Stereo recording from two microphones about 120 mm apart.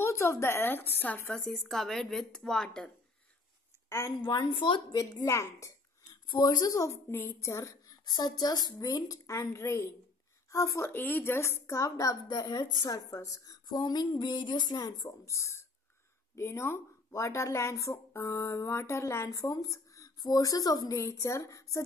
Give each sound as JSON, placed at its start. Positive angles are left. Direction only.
{"t": 0.0, "sound": "speech", "side_deg": 25}
{"t": 4.2, "sound": "speech", "side_deg": 35}
{"t": 4.9, "sound": "speech", "side_deg": 25}
{"t": 6.2, "sound": "speech", "side_deg": 40}